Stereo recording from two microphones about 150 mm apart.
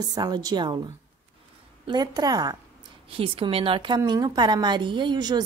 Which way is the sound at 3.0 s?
40° right (ahead or behind).